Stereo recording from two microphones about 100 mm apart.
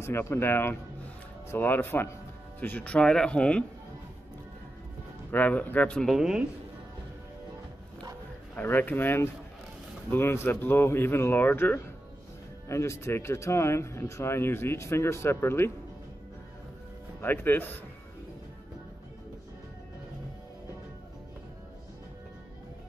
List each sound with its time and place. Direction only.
0.0 s speech: 25° left (ahead or behind)
5.3 s speech: 15° left (ahead or behind)
6.1 s speech: 5° right (ahead or behind)
8.5 s speech: 20° left (ahead or behind)
17.2 s speech: 20° left (ahead or behind)